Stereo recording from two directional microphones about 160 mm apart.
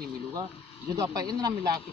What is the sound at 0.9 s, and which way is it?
Speech, 20° right (ahead or behind).